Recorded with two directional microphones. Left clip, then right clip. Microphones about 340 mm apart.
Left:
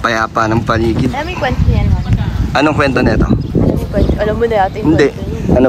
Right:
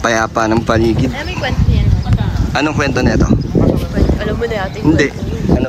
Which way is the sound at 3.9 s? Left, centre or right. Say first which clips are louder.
Left 3 dB; centre.